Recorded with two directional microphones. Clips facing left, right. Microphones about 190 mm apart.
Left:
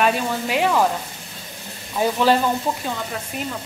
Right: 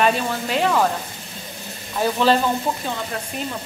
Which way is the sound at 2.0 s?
10° left (ahead or behind).